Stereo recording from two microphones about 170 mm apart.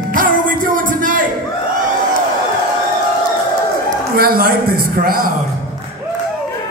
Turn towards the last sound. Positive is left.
turn(degrees=-60)  # may be behind; listen again after turning